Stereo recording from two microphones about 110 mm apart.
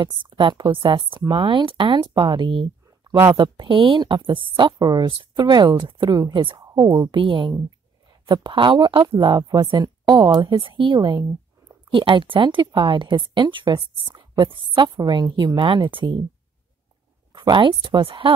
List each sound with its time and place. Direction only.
0.0 s speech: 50° right (ahead or behind)
6.6 s a sound: 30° right (ahead or behind)
7.0 s speech: 50° right (ahead or behind)
17.3 s speech: 40° right (ahead or behind)